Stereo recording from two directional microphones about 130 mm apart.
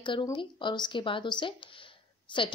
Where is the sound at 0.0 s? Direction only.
40° left (ahead or behind).